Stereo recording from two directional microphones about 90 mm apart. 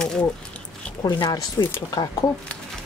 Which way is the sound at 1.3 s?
45° left (ahead or behind).